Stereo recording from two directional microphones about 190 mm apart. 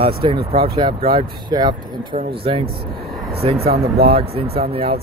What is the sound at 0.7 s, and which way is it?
Speech, 25° right (ahead or behind).